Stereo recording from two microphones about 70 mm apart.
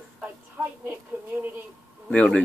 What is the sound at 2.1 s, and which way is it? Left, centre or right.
Speech, centre.